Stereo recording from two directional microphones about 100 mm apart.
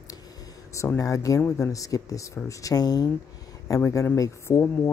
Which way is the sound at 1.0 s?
35° left (ahead or behind).